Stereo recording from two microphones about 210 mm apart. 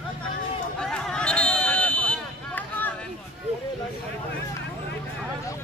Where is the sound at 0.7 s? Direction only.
5° left (ahead or behind).